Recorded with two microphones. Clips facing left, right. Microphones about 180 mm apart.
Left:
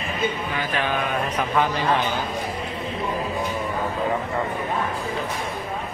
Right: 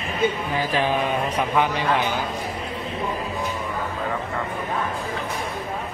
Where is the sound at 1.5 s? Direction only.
15° right (ahead or behind).